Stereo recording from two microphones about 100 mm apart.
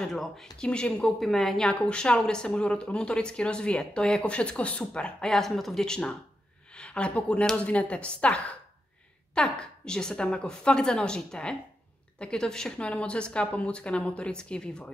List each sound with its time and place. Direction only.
0.0 s a woman's voice: 5° left (ahead or behind)